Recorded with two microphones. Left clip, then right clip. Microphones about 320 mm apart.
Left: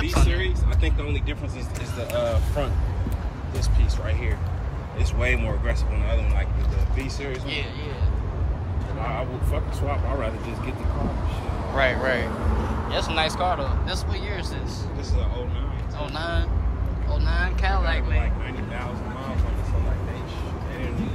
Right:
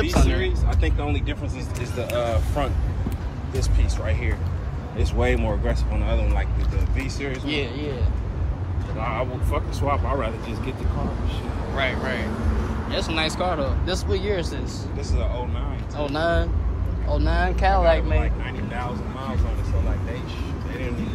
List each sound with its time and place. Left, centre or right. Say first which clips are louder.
0.0 s a sound: right 3 dB; centre
2.0 s speech: even; centre
4.9 s speech: right 2 dB; centre
7.0 s speech: right 2 dB; centre
7.4 s speech: right 4 dB; centre
9.1 s speech: right 5 dB; centre
11.7 s speech: left 4 dB; centre
16.0 s speech: right 7 dB; centre